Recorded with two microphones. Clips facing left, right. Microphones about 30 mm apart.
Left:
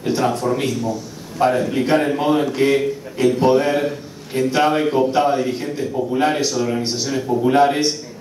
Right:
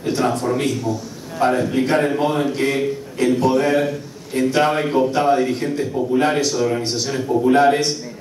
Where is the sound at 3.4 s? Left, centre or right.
Left.